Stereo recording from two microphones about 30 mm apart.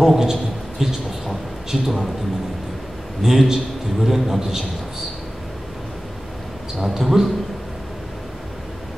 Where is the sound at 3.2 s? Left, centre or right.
Centre.